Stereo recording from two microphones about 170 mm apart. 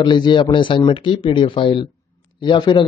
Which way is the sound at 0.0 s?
25° left (ahead or behind).